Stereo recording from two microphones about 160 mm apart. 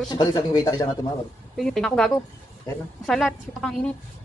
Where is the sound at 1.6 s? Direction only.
Centre (ahead or behind).